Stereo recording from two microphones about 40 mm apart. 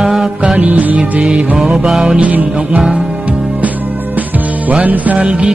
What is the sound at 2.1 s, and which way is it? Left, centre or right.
Music, right.